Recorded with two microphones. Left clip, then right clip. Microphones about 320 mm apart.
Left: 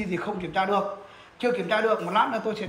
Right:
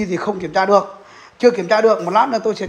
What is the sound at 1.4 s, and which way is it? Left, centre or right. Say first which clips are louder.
A man's voice: right 11 dB; centre.